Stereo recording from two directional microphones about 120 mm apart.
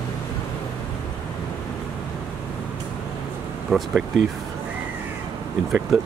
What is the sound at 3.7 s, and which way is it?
Speech, centre (ahead or behind).